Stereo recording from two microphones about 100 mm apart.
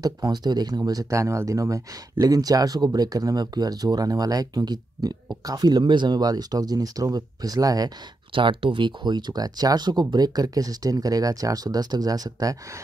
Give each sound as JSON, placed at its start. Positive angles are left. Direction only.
{"t": 0.0, "sound": "speech", "side_deg": -40}
{"t": 8.3, "sound": "speech", "side_deg": -60}